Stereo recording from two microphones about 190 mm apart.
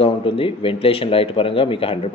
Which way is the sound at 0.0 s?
30° left (ahead or behind).